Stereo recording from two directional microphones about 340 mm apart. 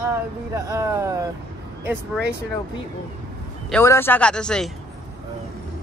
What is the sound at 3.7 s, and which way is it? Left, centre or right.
A man's voice, centre.